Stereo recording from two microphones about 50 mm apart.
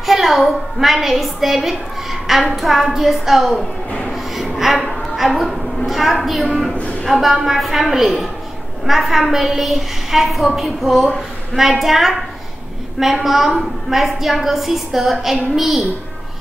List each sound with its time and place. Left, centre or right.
0.0 s a woman's voice: centre
4.1 s a sound: centre
6.7 s speech: left
7.1 s a woman's voice: centre